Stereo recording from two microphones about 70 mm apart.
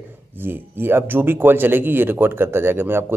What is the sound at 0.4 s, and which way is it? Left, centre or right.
Speech, right.